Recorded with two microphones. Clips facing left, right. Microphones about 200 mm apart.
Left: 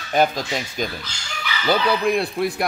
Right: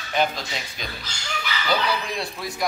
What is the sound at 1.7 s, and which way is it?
Speech, 60° left (ahead or behind).